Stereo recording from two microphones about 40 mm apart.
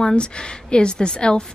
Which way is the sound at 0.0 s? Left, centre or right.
Left.